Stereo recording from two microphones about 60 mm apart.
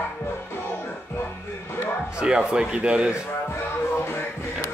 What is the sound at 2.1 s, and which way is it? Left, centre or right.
Speech, centre.